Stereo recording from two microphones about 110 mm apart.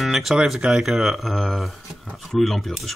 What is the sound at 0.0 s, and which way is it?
Speech, centre (ahead or behind).